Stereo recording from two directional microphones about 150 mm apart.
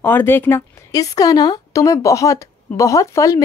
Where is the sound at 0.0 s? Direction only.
15° left (ahead or behind).